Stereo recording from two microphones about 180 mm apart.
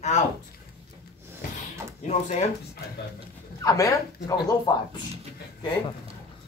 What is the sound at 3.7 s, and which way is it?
Speech, 20° left (ahead or behind).